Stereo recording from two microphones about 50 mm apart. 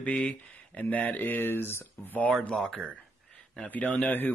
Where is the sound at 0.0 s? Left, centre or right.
Left.